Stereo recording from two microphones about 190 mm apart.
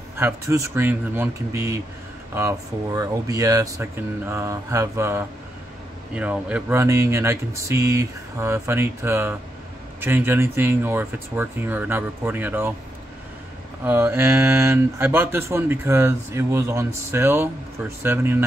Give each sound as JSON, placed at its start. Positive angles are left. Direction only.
{"t": 0.2, "sound": "speech", "side_deg": -15}
{"t": 13.8, "sound": "speech", "side_deg": -10}